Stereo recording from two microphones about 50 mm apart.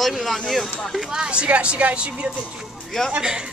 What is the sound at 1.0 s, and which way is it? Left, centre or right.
Speech, centre.